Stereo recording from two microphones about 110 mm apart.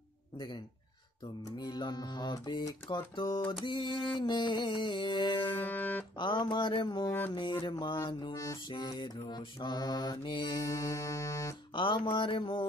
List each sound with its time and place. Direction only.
1.6 s mantra: 40° left (ahead or behind)
3.6 s music: 45° left (ahead or behind)
5.5 s music: 20° left (ahead or behind)
6.1 s music: 45° left (ahead or behind)
7.1 s speech: 20° left (ahead or behind)
7.6 s music: 45° left (ahead or behind)
8.6 s mantra: 40° left (ahead or behind)
11.7 s speech: 50° left (ahead or behind)
12.1 s music: 50° left (ahead or behind)